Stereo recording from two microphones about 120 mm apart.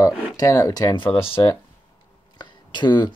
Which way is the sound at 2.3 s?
40° left (ahead or behind).